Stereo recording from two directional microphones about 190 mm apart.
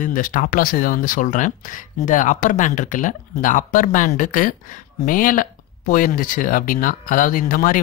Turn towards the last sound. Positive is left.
turn(degrees=45)  # may be behind; listen again after turning